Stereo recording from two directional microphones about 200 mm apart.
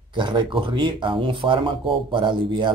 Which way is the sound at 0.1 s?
25° right (ahead or behind).